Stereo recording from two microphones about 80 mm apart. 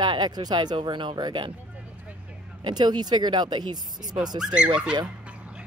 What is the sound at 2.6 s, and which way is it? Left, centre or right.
Speech, right.